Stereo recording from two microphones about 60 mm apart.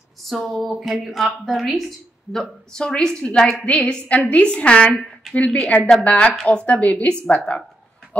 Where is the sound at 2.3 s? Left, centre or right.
Centre.